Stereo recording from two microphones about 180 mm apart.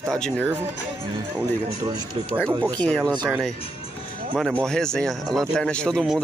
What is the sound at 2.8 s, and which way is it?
Speech, 5° left (ahead or behind).